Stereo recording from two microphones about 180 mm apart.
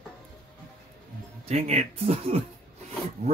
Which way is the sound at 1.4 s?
35° right (ahead or behind).